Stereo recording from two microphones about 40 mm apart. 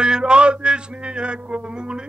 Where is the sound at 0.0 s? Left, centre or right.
Right.